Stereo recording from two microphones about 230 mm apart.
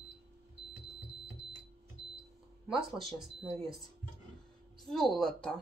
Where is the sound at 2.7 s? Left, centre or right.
Centre.